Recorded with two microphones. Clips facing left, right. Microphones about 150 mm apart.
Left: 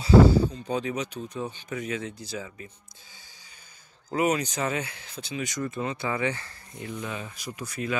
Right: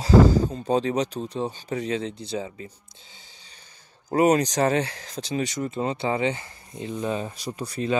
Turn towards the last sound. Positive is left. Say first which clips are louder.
# right 5 dB
turn(degrees=-30)  # may be behind; listen again after turning